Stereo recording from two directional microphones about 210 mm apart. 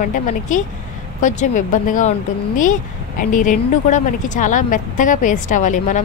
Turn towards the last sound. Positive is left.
turn(degrees=35)  # may be behind; listen again after turning